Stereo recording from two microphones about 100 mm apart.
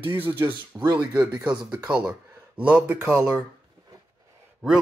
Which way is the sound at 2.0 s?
15° right (ahead or behind).